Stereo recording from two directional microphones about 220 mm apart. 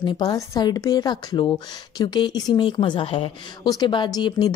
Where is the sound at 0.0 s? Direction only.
20° left (ahead or behind).